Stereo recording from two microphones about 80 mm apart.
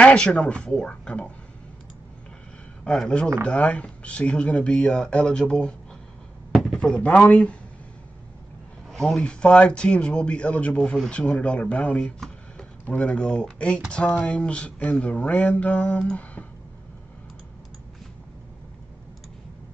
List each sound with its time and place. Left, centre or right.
0.0 s speech: centre
3.4 s speech: centre
6.5 s a sound: centre
6.8 s speech: centre
8.9 s speech: centre